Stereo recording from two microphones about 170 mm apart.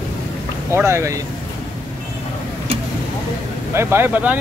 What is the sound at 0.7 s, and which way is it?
Speech, 15° right (ahead or behind).